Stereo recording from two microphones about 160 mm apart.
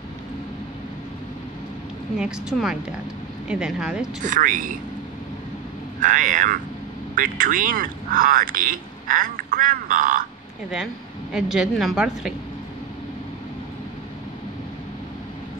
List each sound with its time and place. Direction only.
2.1 s a woman's voice: 5° right (ahead or behind)
4.2 s speech: 55° right (ahead or behind)
5.9 s speech: 55° right (ahead or behind)
11.3 s a woman's voice: 5° right (ahead or behind)